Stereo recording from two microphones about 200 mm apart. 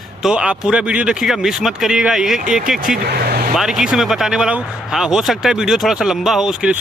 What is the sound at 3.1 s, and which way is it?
Vehicle, 50° right (ahead or behind).